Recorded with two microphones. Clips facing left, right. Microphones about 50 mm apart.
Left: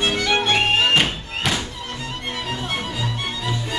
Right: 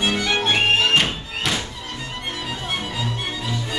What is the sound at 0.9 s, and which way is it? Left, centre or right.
Music, centre.